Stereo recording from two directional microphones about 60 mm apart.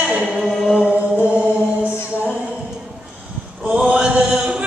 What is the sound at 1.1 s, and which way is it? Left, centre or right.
Chant, right.